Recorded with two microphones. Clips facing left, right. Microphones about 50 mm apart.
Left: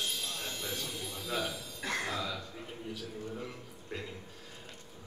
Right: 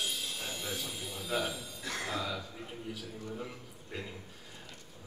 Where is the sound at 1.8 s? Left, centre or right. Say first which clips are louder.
Left 4 dB; left.